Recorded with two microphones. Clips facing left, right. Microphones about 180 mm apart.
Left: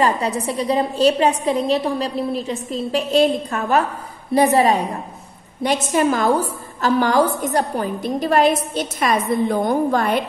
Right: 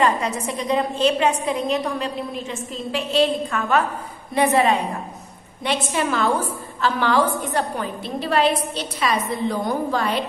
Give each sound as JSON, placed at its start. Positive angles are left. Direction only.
{"t": 0.0, "sound": "a woman's voice", "side_deg": 35}